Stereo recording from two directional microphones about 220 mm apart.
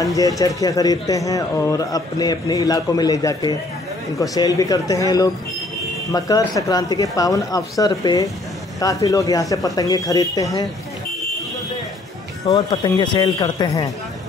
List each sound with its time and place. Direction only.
0.0 s speech: 15° left (ahead or behind)
12.4 s speech: 20° left (ahead or behind)